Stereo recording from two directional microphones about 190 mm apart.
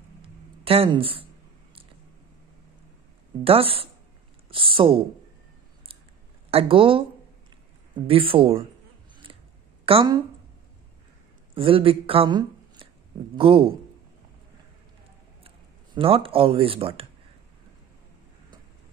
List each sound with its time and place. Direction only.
0.2 s a sound: 30° right (ahead or behind)
3.4 s speech: 30° right (ahead or behind)
6.5 s speech: 30° right (ahead or behind)
9.8 s speech: 25° right (ahead or behind)
11.5 s speech: 30° right (ahead or behind)
15.4 s speech: 30° right (ahead or behind)